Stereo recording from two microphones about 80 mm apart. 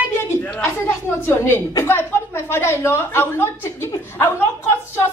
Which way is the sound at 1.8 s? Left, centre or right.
Left.